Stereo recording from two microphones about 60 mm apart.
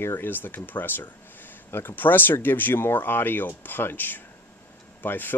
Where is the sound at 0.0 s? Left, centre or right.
Left.